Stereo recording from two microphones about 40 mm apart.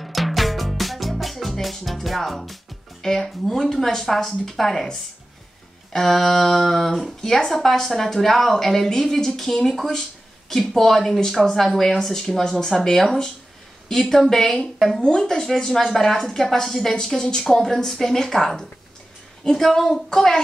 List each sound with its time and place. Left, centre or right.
0.0 s music: centre
4.3 s speech: centre
5.9 s speech: centre
15.0 s speech: left
15.2 s speech: centre